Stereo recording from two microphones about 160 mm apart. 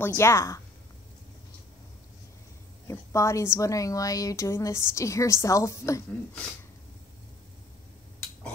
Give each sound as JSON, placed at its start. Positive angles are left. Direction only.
{"t": 0.0, "sound": "speech", "side_deg": 15}
{"t": 2.9, "sound": "a woman's voice", "side_deg": 20}